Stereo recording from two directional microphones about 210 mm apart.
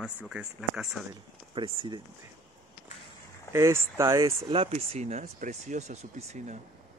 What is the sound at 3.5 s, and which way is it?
Speech, 15° right (ahead or behind).